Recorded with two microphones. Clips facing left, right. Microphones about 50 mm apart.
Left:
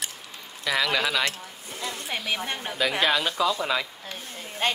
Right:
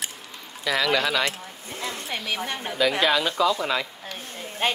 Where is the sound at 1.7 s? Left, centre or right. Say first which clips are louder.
Right 1 dB; right.